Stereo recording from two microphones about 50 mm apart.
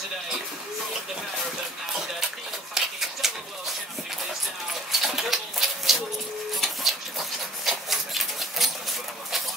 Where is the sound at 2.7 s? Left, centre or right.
Centre.